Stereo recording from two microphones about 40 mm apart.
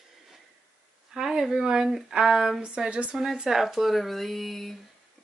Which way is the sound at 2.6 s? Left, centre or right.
Right.